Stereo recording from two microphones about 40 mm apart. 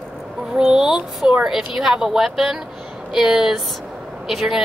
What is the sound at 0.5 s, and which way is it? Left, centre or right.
Speech, centre.